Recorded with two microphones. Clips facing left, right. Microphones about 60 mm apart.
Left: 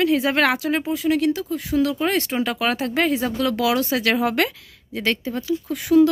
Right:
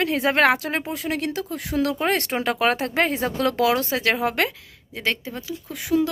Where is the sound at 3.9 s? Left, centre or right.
Right.